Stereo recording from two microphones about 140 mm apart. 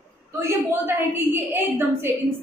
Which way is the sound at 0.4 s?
15° right (ahead or behind).